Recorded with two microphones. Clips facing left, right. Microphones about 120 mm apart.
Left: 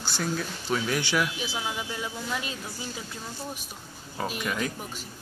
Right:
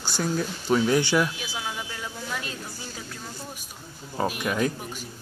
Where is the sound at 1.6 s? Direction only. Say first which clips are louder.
Even; 10° left (ahead or behind).